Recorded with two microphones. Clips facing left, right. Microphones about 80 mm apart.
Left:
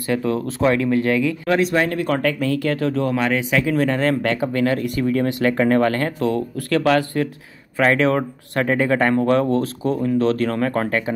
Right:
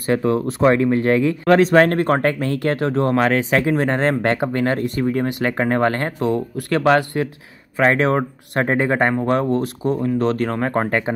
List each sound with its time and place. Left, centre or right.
0.0 s speech: right
1.5 s speech: right
3.1 s speech: right
10.9 s speech: right